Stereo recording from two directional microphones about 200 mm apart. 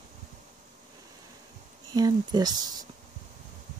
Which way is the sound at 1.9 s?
20° right (ahead or behind).